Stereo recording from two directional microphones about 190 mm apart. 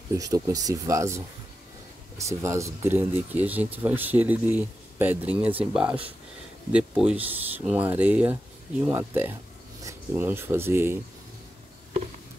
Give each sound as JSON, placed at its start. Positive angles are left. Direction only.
{"t": 0.1, "sound": "speech", "side_deg": -20}